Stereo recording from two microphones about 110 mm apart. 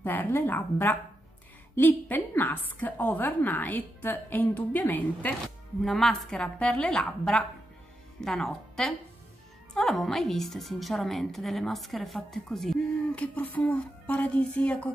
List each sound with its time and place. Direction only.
0.0 s a woman's voice: 15° left (ahead or behind)
5.9 s a woman's voice: 5° left (ahead or behind)